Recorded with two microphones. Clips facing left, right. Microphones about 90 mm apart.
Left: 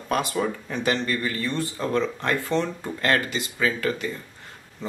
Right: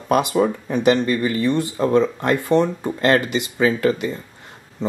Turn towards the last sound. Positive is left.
turn(degrees=-20)  # may be behind; listen again after turning